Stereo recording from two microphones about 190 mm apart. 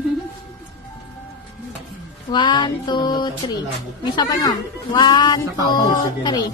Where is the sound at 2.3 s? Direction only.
25° left (ahead or behind).